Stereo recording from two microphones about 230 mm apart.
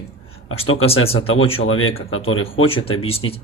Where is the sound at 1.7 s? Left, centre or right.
Left.